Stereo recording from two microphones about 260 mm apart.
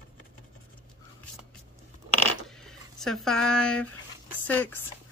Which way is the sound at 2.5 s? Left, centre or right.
Centre.